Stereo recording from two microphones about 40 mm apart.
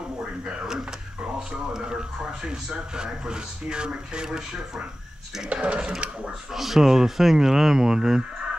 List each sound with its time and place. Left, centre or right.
0.5 s speech: centre
6.5 s speech: centre